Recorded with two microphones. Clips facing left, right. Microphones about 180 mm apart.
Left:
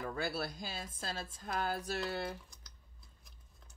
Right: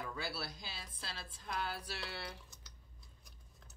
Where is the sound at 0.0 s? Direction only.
50° left (ahead or behind).